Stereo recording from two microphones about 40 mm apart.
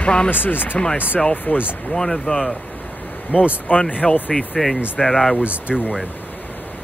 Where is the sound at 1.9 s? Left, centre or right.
Centre.